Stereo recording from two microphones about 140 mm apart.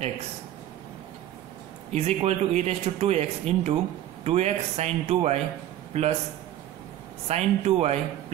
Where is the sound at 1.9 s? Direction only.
50° right (ahead or behind).